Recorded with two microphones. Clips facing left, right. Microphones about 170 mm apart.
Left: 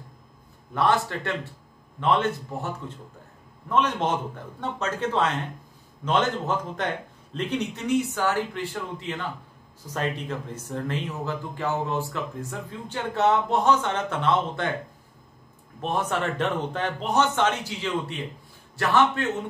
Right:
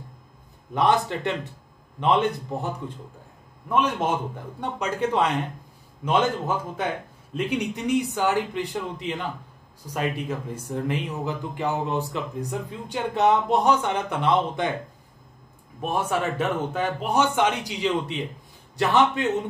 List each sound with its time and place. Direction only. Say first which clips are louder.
0.7 s a man's voice: right 2 dB; 20° right (ahead or behind)
15.8 s speech: right 1 dB; 10° right (ahead or behind)